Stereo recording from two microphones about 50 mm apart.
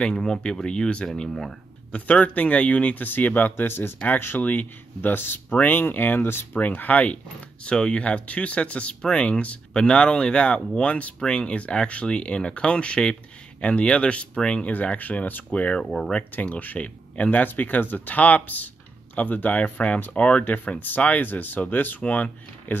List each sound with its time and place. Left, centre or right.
0.2 s speech: centre
1.9 s speech: left
4.4 s speech: left
7.6 s speech: centre
14.7 s speech: left
15.8 s speech: centre
16.3 s speech: left